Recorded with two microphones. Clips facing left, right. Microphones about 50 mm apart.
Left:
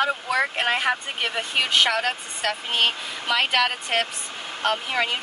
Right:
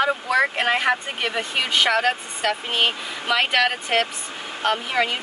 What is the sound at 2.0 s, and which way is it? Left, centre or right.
Speech, right.